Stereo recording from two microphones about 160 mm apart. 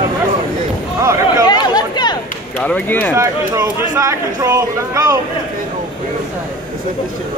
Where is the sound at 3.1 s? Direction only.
20° right (ahead or behind).